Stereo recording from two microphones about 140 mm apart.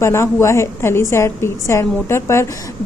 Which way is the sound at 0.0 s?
20° left (ahead or behind).